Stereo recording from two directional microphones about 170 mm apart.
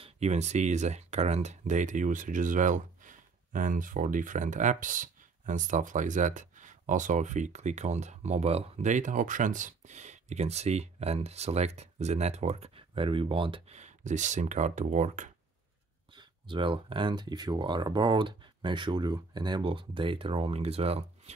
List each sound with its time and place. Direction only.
0.0 s speech: 40° right (ahead or behind)
16.1 s speech: 30° right (ahead or behind)